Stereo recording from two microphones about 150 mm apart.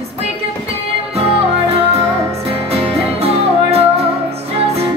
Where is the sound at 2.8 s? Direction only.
40° right (ahead or behind).